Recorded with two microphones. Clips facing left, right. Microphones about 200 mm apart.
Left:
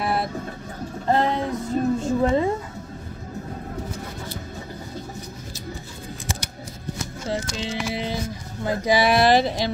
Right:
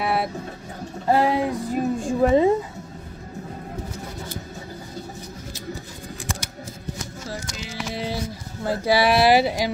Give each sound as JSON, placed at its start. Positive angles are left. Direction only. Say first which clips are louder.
{"t": 0.0, "sound": "a sound", "louder": "right 1 dB", "side_deg": -5}
{"t": 7.2, "sound": "music", "louder": "left 9 dB", "side_deg": 25}
{"t": 7.9, "sound": "music", "louder": "left 1 dB", "side_deg": -5}
{"t": 8.6, "sound": "speech", "louder": "even", "side_deg": -5}